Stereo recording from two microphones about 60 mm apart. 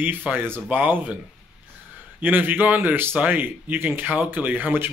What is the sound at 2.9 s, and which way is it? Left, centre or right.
Speech, right.